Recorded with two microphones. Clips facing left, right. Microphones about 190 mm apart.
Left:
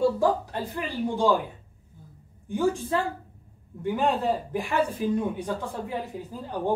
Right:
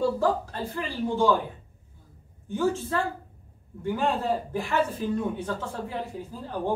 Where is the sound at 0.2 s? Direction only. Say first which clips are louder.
Left 1 dB; 15° left (ahead or behind).